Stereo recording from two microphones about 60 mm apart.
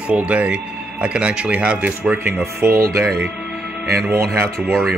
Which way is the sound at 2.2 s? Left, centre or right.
Right.